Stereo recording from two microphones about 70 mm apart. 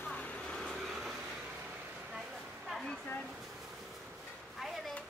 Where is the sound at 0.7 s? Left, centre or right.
Centre.